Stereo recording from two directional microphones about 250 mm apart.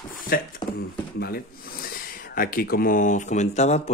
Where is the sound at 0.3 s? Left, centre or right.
Left.